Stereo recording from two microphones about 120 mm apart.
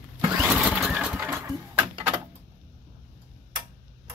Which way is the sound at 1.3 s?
30° right (ahead or behind).